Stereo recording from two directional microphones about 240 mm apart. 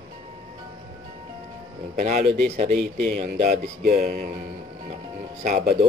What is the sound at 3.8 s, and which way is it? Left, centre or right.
Speech, right.